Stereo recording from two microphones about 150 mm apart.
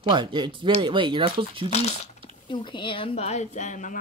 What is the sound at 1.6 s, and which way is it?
Speech, 45° left (ahead or behind).